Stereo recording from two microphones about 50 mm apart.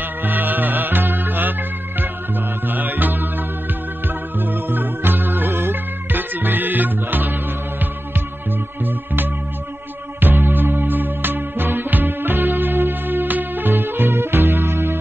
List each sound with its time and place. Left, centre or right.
0.0 s music: right
8.8 s music: right